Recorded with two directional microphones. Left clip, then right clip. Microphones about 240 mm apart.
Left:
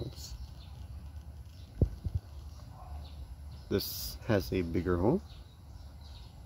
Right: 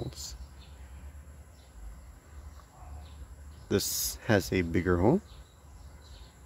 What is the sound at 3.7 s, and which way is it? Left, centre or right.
Speech, centre.